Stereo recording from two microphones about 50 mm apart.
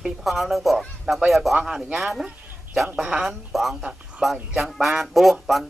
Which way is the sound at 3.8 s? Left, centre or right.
Centre.